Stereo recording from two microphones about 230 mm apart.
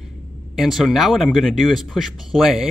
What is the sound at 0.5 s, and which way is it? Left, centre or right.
A man's voice, centre.